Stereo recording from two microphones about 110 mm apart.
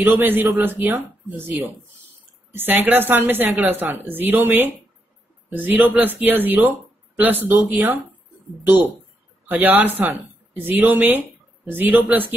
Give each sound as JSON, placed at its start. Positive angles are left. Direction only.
{"t": 0.0, "sound": "a woman's voice", "side_deg": -20}